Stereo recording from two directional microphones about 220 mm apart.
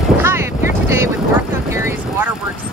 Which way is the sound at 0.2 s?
10° right (ahead or behind).